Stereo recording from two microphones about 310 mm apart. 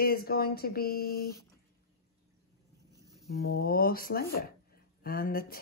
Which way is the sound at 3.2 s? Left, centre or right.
Left.